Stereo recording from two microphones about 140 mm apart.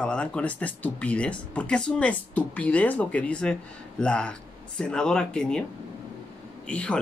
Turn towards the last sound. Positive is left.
turn(degrees=10)  # may be behind; listen again after turning